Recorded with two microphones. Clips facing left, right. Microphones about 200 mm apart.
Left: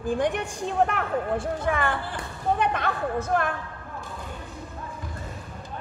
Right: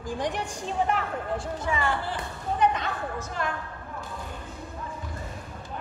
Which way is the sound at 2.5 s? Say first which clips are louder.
Right 2 dB; 60° left (ahead or behind).